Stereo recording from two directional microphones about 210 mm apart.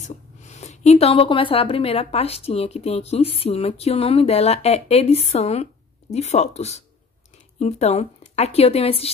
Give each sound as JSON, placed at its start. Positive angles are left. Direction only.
{"t": 0.1, "sound": "a woman's voice", "side_deg": 35}